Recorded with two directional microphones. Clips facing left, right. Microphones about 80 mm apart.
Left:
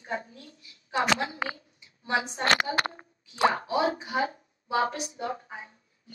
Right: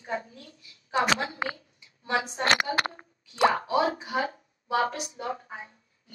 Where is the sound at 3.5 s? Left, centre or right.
Right.